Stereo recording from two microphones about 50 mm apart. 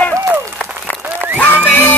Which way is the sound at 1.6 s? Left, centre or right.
Left.